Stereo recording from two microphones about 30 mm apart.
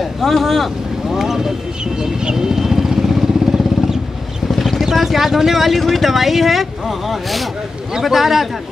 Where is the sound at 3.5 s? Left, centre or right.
Right.